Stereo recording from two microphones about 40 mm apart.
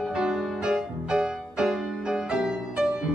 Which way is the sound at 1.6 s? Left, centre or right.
Centre.